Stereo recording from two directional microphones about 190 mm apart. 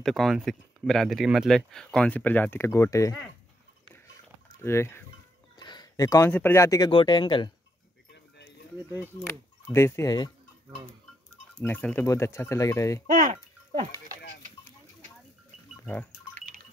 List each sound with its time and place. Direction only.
0.0 s speech: centre (ahead or behind); by 3.3 s 15° left (ahead or behind)
3.9 s a sound: 15° left (ahead or behind)
5.6 s speech: 20° left (ahead or behind)
8.5 s a sound: 10° right (ahead or behind)
9.2 s speech: 15° left (ahead or behind)
11.5 s speech: 5° left (ahead or behind)
13.0 s speech: 45° right (ahead or behind)
15.7 s pig: 5° left (ahead or behind)